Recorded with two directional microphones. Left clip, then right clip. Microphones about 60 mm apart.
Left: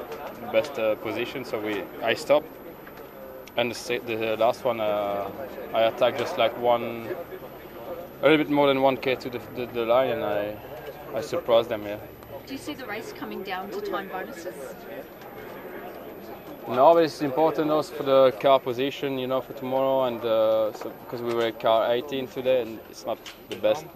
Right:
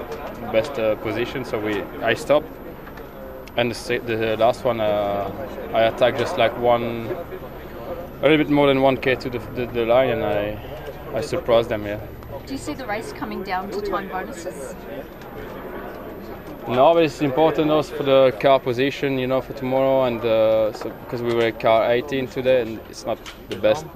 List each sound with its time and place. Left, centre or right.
0.5 s speech: centre
1.6 s speech: centre
3.5 s speech: centre
8.2 s a man's voice: centre
8.7 s speech: centre
12.6 s a woman's voice: right
16.6 s speech: centre
18.4 s speech: centre